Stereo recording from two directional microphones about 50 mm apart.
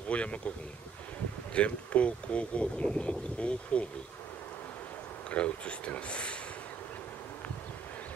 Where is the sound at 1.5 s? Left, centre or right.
Left.